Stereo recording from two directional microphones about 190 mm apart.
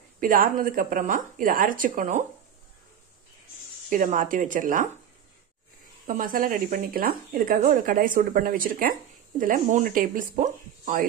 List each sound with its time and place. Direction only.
0.2 s speech: 45° right (ahead or behind)
3.9 s speech: 45° right (ahead or behind)
6.0 s speech: 45° right (ahead or behind)